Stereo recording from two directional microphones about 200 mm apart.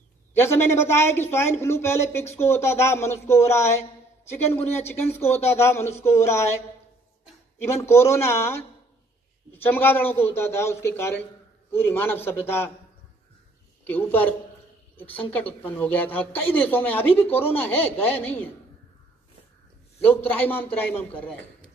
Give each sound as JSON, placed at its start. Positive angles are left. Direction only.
{"t": 0.4, "sound": "a woman's voice", "side_deg": 10}
{"t": 5.0, "sound": "speech", "side_deg": 30}
{"t": 5.5, "sound": "a woman's voice", "side_deg": 15}
{"t": 7.8, "sound": "a woman's voice", "side_deg": 15}
{"t": 13.8, "sound": "a woman's voice", "side_deg": 10}
{"t": 15.3, "sound": "a woman's voice", "side_deg": 10}
{"t": 20.0, "sound": "a woman's voice", "side_deg": 10}